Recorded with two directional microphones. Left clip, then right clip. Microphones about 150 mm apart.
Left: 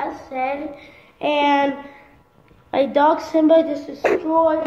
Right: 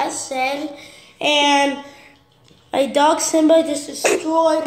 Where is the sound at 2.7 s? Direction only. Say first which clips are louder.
Right 1 dB; 30° right (ahead or behind); by 4.4 s 10° right (ahead or behind).